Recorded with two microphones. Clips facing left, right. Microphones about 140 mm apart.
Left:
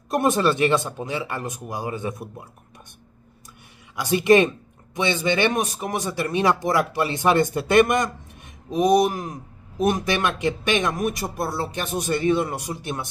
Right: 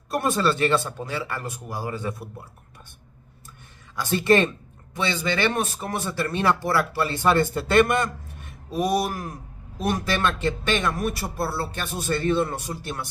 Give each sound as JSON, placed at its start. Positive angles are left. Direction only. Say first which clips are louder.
{"t": 0.1, "sound": "speech", "louder": "left 3 dB", "side_deg": 20}
{"t": 3.9, "sound": "speech", "louder": "left 3 dB", "side_deg": 15}